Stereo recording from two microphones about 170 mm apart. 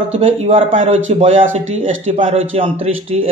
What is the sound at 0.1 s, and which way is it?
Speech, 35° right (ahead or behind).